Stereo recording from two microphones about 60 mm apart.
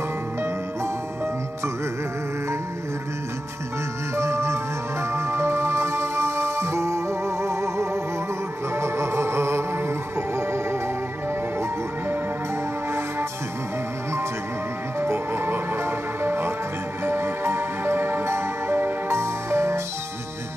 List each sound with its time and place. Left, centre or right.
4.1 s music: right
15.0 s music: right